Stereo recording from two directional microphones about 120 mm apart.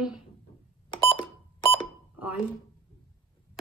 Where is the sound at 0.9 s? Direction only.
45° left (ahead or behind).